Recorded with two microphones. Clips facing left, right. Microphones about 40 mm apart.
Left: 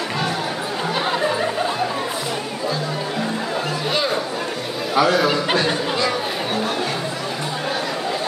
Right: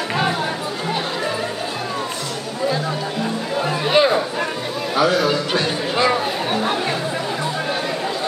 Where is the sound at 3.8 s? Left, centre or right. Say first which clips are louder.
Right 8 dB; right.